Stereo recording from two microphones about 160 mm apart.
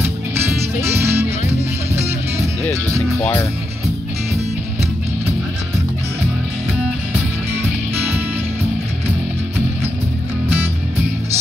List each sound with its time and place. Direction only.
0.7 s music: 15° right (ahead or behind)